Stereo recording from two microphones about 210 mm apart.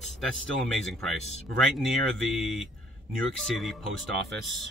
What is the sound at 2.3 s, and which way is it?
Speech, centre (ahead or behind).